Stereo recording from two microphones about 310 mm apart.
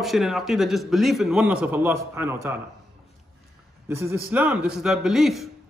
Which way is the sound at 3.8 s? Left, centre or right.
Centre.